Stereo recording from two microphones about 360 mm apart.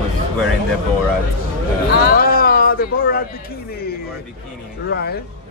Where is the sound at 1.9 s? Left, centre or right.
Left.